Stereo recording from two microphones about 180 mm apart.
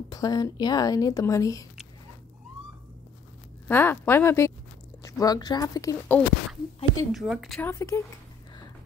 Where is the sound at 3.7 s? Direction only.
10° left (ahead or behind).